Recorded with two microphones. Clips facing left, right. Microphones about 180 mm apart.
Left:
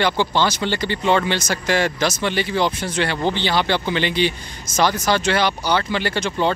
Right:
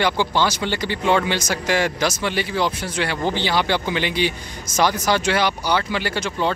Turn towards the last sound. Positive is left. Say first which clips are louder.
# left 2 dB
turn(degrees=-5)  # may be behind; listen again after turning